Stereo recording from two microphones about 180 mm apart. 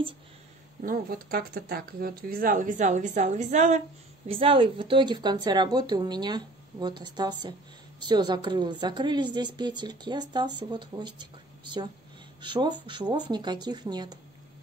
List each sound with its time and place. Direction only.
0.8 s speech: 55° right (ahead or behind)
4.3 s speech: 30° right (ahead or behind)
12.4 s speech: 25° right (ahead or behind)